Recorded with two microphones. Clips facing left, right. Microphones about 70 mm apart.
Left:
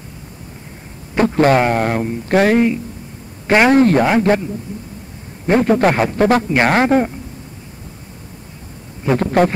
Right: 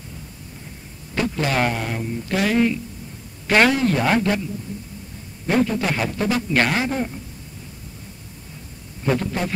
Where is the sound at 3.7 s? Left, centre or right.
Left.